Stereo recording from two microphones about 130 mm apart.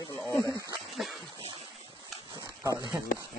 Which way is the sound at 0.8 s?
Centre (ahead or behind).